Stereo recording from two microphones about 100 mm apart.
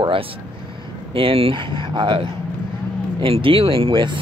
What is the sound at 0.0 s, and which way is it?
Speech, 65° right (ahead or behind).